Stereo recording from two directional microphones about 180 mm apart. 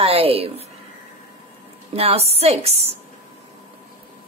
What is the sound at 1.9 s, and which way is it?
Speech, 35° right (ahead or behind).